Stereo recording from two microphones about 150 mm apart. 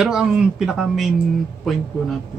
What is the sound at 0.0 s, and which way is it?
Speech, 5° right (ahead or behind).